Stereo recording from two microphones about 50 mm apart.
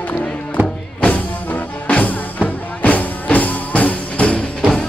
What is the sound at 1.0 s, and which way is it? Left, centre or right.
Music, left.